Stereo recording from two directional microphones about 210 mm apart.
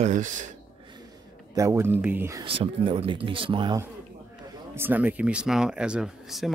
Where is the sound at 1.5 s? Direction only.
15° right (ahead or behind).